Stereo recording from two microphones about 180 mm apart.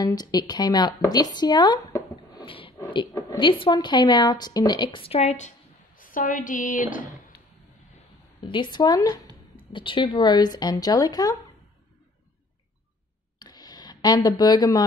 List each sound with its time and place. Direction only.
0.0 s speech: 20° left (ahead or behind); by 5.5 s 35° left (ahead or behind)
5.9 s a woman's voice: 50° left (ahead or behind)
8.5 s speech: 25° left (ahead or behind)
13.4 s a sound: 20° left (ahead or behind)